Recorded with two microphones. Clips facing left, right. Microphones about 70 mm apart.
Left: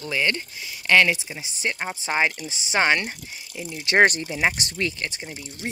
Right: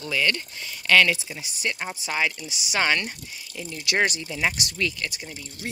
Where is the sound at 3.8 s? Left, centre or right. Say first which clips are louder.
Left 6 dB; left.